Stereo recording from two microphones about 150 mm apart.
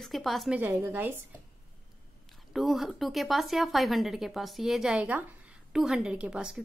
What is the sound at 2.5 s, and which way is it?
A woman's voice, centre (ahead or behind).